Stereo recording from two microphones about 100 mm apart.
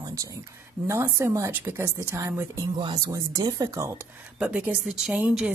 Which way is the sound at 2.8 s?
50° right (ahead or behind).